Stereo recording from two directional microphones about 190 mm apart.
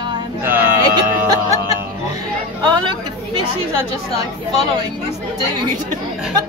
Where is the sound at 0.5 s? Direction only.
10° right (ahead or behind).